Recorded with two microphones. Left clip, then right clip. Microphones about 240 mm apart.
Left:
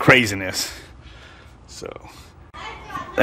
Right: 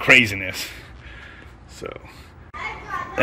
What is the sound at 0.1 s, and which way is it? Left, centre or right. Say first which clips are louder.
Speech: right 1 dB; left.